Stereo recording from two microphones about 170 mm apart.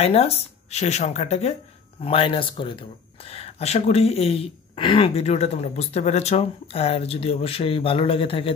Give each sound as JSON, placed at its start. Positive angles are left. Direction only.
{"t": 0.0, "sound": "speech", "side_deg": 35}